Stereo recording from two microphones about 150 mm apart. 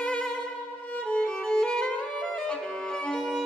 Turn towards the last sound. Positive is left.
turn(degrees=5)  # may be behind; listen again after turning